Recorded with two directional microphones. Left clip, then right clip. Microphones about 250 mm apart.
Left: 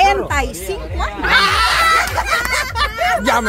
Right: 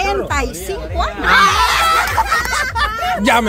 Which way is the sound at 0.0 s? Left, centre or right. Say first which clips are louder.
Left 4 dB; centre.